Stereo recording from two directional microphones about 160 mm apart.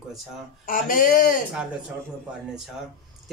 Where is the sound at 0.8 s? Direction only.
60° left (ahead or behind).